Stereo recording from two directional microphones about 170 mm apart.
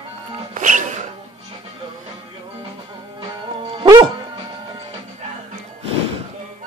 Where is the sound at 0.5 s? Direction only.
50° right (ahead or behind).